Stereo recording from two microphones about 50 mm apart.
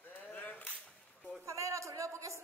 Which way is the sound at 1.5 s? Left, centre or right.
Right.